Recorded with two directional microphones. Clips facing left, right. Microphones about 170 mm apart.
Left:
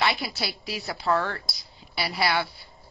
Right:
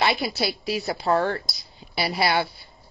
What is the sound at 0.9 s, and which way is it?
Speech, 35° right (ahead or behind).